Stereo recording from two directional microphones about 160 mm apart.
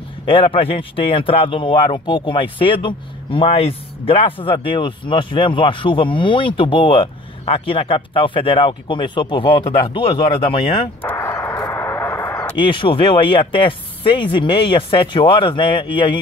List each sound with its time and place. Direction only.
0.3 s speech: 35° left (ahead or behind)
11.0 s a sound: 15° left (ahead or behind)
12.5 s speech: 30° left (ahead or behind)